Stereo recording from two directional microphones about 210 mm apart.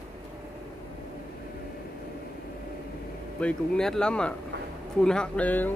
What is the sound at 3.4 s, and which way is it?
Speech, 5° left (ahead or behind).